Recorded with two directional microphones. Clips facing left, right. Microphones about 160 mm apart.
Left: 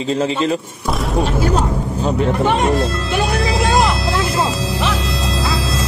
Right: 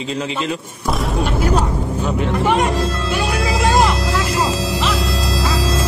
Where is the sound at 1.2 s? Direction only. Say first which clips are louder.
Even; 35° left (ahead or behind).